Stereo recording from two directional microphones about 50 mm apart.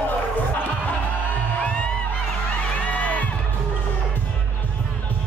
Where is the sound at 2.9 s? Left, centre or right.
Left.